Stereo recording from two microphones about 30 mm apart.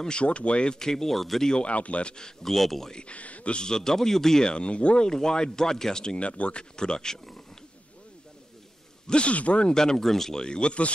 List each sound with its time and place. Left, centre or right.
0.1 s speech: left
0.7 s speech: centre
1.6 s speech: left
2.4 s speech: centre
3.1 s speech: left
3.5 s speech: left
4.5 s speech: left
5.0 s speech: left
6.1 s speech: left
6.8 s speech: left
9.2 s speech: left
9.7 s speech: left
10.0 s speech: centre
10.3 s speech: left